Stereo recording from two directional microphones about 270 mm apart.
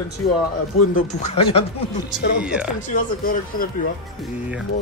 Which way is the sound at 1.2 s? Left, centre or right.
Left.